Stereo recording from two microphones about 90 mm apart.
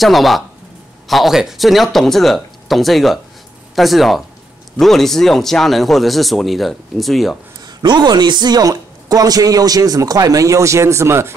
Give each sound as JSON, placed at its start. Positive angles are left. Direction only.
{"t": 0.0, "sound": "speech", "side_deg": 0}
{"t": 7.6, "sound": "speech", "side_deg": -55}